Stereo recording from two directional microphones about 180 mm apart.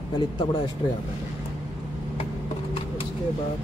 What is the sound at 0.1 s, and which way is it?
Speech, 25° left (ahead or behind).